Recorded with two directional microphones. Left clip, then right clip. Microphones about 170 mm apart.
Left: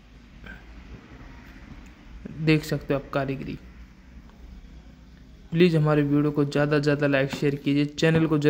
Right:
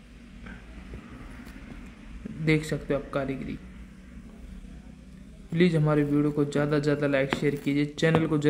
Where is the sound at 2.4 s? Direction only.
10° left (ahead or behind).